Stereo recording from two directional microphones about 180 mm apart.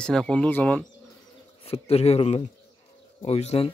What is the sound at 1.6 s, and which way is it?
Speech, 35° left (ahead or behind).